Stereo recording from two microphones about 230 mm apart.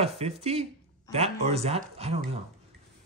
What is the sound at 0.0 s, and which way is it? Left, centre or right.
Speech, right.